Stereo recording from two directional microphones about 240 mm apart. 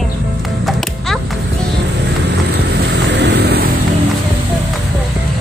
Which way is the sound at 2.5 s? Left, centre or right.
Right.